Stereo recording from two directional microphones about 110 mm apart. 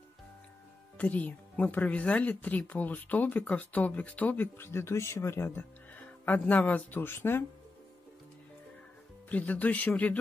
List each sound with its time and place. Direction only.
0.9 s speech: 15° left (ahead or behind)
9.3 s speech: 15° left (ahead or behind)